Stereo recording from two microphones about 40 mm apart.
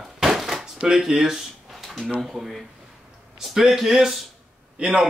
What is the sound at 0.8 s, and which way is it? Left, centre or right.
Speech, centre.